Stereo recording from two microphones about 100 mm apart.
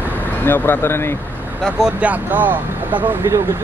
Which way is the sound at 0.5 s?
25° left (ahead or behind).